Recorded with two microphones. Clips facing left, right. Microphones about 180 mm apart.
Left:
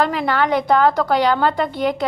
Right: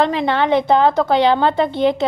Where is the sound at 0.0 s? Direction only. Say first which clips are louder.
Right 2 dB; 25° right (ahead or behind).